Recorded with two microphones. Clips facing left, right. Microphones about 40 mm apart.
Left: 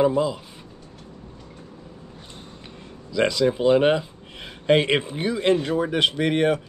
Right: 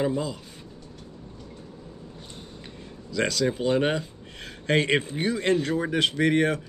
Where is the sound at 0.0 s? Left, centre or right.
Centre.